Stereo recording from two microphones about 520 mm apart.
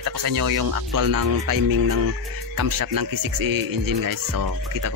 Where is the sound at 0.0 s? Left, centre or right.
Right.